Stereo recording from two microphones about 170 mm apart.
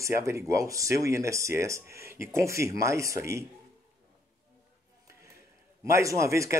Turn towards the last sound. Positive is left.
turn(degrees=-15)  # may be behind; listen again after turning